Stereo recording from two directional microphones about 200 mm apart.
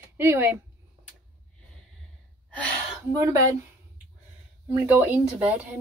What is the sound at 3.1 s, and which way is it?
Speech, 15° right (ahead or behind).